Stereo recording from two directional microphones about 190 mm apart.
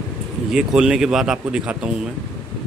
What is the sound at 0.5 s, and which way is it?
Speech, 5° right (ahead or behind).